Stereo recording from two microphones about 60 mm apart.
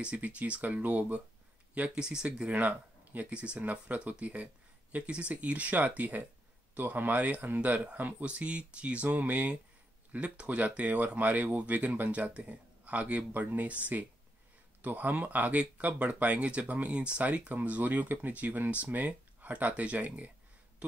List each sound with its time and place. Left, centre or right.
0.0 s speech: right
1.8 s speech: centre
14.8 s speech: right